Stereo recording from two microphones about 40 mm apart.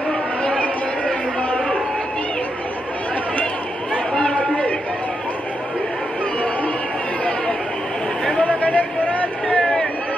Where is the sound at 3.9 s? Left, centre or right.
Left.